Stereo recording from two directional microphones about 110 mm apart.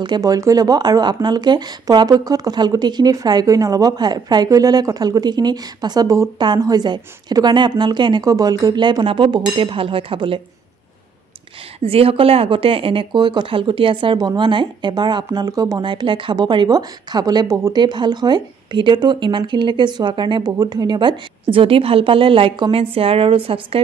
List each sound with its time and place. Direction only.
0.0 s speech: 40° right (ahead or behind)
11.8 s speech: 60° right (ahead or behind); by 15.8 s 35° right (ahead or behind)
15.8 s speech: 45° right (ahead or behind)